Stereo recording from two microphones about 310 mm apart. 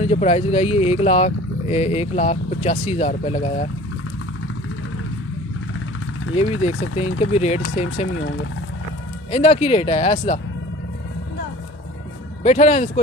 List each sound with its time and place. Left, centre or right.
0.0 s speech: centre
7.2 s speech: left
9.3 s speech: centre
12.4 s speech: centre